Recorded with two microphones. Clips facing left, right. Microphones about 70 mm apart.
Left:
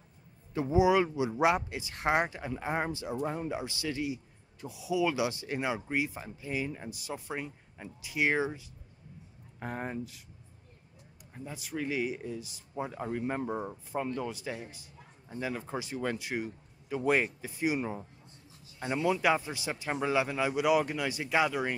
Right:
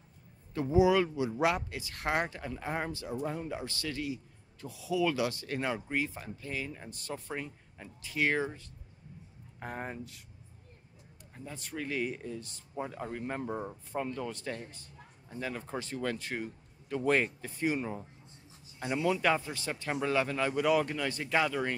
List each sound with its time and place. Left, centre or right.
0.6 s speech: centre
11.3 s speech: centre
18.8 s speech: left